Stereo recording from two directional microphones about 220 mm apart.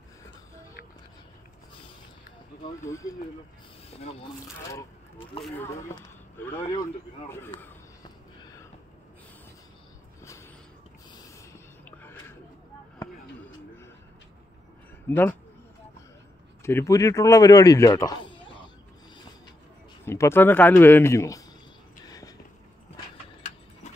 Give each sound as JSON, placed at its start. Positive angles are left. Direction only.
{"t": 2.8, "sound": "speech", "side_deg": 15}
{"t": 3.9, "sound": "speech", "side_deg": 25}
{"t": 5.4, "sound": "speech", "side_deg": 10}
{"t": 11.5, "sound": "a sound", "side_deg": 10}
{"t": 15.0, "sound": "speech", "side_deg": 10}
{"t": 16.6, "sound": "speech", "side_deg": 15}
{"t": 20.1, "sound": "speech", "side_deg": 10}
{"t": 22.0, "sound": "a sound", "side_deg": 15}